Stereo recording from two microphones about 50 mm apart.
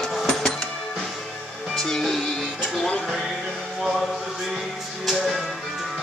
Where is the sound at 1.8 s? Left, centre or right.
Centre.